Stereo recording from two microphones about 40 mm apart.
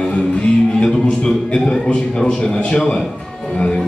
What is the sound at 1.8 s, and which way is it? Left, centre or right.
Speech, left.